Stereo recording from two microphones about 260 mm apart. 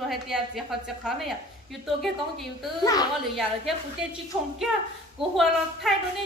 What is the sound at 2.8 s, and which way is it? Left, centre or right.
Speech, centre.